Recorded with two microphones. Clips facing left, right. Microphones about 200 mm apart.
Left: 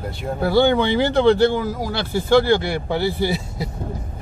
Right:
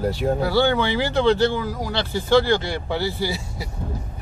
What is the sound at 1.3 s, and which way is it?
Speech, 50° left (ahead or behind).